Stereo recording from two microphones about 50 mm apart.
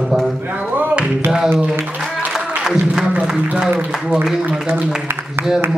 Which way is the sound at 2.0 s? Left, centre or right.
Centre.